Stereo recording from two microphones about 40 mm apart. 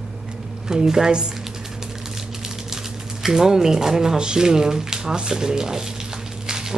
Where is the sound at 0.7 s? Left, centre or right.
Centre.